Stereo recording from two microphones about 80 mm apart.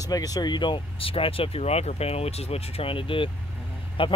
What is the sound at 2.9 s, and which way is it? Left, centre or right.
Speech, left.